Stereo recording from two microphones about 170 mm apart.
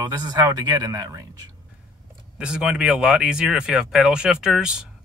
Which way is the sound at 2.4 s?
5° right (ahead or behind).